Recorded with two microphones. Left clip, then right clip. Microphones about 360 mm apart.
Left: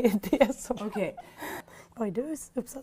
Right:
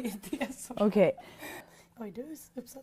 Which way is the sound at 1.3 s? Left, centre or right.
Centre.